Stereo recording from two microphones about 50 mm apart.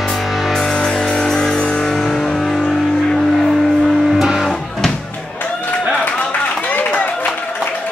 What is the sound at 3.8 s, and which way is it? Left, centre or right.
Music, centre.